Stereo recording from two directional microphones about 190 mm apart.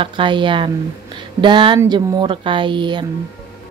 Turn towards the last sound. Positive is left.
turn(degrees=-25)  # may be behind; listen again after turning